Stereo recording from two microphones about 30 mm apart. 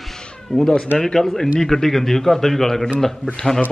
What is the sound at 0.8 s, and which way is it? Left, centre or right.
A man's voice, centre.